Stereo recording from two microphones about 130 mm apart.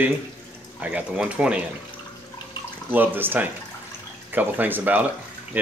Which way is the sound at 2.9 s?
15° right (ahead or behind).